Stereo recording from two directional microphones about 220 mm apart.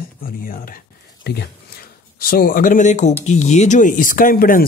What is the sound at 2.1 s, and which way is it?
Speech, 40° left (ahead or behind).